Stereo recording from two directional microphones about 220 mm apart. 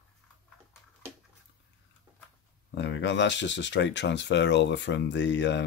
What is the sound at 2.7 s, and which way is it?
Speech, 55° left (ahead or behind).